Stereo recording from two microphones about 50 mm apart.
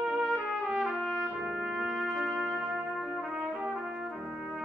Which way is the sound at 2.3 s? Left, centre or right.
Centre.